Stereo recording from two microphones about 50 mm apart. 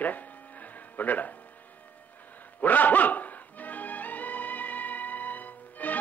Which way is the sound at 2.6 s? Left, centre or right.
Left.